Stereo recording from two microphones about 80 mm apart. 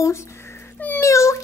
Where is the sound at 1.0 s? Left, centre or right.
Left.